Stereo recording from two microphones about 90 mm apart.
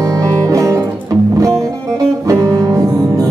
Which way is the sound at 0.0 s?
40° right (ahead or behind).